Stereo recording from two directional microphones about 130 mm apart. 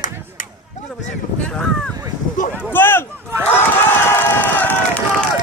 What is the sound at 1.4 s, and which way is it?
Speech, 5° left (ahead or behind).